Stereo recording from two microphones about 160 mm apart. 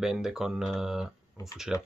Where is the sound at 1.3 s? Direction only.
20° left (ahead or behind).